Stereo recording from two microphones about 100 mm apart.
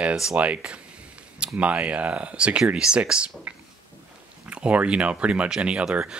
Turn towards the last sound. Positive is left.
turn(degrees=-10)  # may be behind; listen again after turning